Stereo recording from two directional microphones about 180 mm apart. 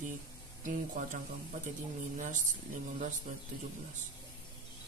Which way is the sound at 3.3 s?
40° right (ahead or behind).